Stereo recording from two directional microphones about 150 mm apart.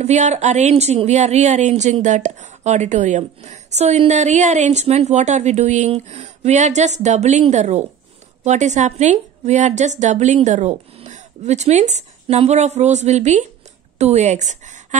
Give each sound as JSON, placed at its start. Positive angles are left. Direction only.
{"t": 0.0, "sound": "a woman's voice", "side_deg": -50}